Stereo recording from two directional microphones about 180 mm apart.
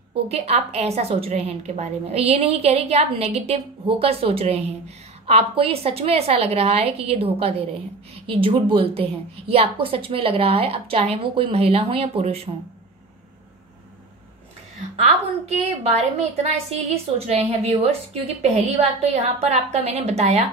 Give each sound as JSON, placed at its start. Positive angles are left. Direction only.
{"t": 0.3, "sound": "a woman's voice", "side_deg": -35}
{"t": 15.0, "sound": "a woman's voice", "side_deg": -35}